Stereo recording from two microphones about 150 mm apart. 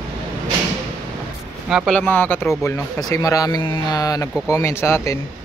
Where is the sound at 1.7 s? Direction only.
Centre (ahead or behind).